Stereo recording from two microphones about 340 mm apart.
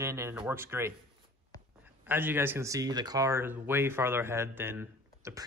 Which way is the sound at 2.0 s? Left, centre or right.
Centre.